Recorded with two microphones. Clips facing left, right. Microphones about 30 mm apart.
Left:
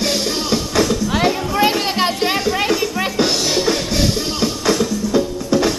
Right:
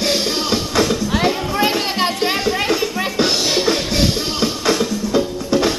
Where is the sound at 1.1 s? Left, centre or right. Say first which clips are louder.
Left 1 dB; centre.